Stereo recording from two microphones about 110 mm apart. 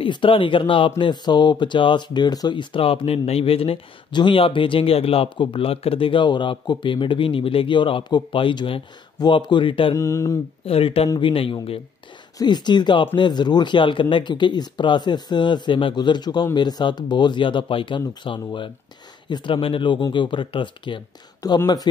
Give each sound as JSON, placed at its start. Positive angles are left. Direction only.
{"t": 0.0, "sound": "speech", "side_deg": 50}
{"t": 9.9, "sound": "mantra", "side_deg": 25}
{"t": 10.6, "sound": "speech", "side_deg": 60}
{"t": 12.4, "sound": "speech", "side_deg": 40}
{"t": 21.4, "sound": "speech", "side_deg": 30}